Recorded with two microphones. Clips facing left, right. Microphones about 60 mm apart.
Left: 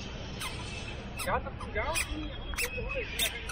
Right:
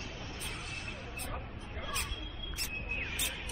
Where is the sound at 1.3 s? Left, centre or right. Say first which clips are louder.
Left 11 dB; left.